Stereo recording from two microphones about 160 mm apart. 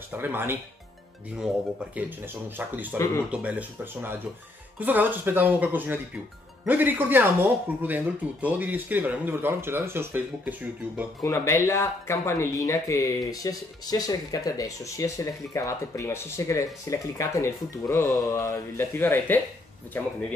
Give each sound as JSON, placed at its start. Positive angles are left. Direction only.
{"t": 0.1, "sound": "speech", "side_deg": -10}
{"t": 2.0, "sound": "speech", "side_deg": -10}
{"t": 11.2, "sound": "speech", "side_deg": 15}